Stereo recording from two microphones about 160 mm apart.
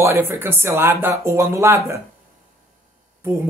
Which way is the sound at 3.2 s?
15° right (ahead or behind).